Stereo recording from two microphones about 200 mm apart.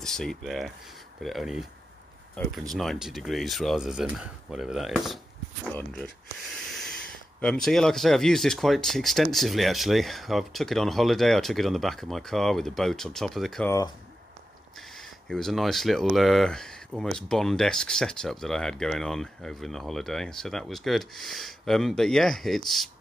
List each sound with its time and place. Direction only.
0.0 s speech: 5° left (ahead or behind)
2.7 s speech: centre (ahead or behind)
15.0 s speech: centre (ahead or behind)